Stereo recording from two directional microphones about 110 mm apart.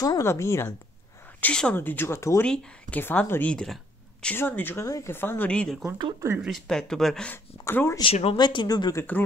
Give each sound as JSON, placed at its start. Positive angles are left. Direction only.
{"t": 0.0, "sound": "speech", "side_deg": 30}
{"t": 1.4, "sound": "speech", "side_deg": 10}
{"t": 2.4, "sound": "speech", "side_deg": 10}
{"t": 3.0, "sound": "speech", "side_deg": 20}
{"t": 3.5, "sound": "a sound", "side_deg": 5}
{"t": 4.3, "sound": "speech", "side_deg": 15}
{"t": 5.5, "sound": "speech", "side_deg": 10}
{"t": 7.6, "sound": "speech", "side_deg": 25}
{"t": 8.0, "sound": "speech", "side_deg": 60}
{"t": 8.4, "sound": "speech", "side_deg": 45}